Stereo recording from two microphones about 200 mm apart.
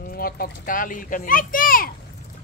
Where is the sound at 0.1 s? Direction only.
45° left (ahead or behind).